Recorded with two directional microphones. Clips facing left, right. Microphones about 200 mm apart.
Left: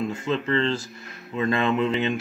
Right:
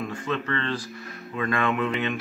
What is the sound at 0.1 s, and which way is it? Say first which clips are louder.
Speech: left 4 dB; 25° left (ahead or behind).